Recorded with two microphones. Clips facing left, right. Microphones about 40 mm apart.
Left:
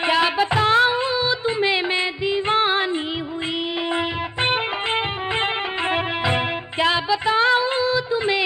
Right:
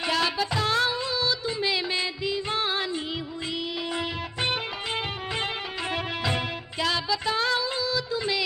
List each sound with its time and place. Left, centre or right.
0.0 s music: left
3.9 s music: left